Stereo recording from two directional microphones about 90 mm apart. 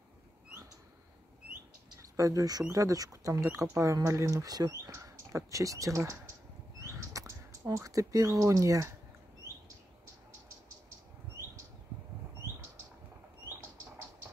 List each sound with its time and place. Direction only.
2.0 s speech: 35° right (ahead or behind)